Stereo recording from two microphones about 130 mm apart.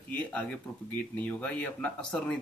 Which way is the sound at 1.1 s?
10° left (ahead or behind).